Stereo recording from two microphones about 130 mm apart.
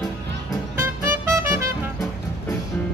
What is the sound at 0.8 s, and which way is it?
Music, 15° right (ahead or behind).